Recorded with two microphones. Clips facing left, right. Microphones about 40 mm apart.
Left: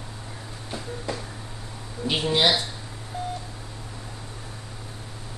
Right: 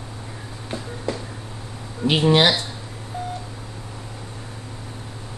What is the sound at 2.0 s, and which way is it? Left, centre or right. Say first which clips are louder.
Speech: right 5 dB; right.